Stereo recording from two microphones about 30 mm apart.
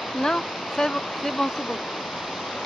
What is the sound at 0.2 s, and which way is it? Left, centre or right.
Speech, left.